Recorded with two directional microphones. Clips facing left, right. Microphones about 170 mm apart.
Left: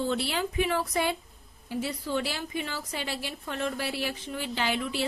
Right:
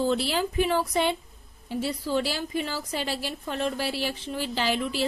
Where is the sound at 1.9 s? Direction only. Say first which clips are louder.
Right 5 dB; 35° right (ahead or behind).